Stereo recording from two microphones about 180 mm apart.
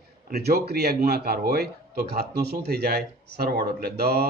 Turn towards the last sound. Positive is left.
turn(degrees=-60)  # may be behind; listen again after turning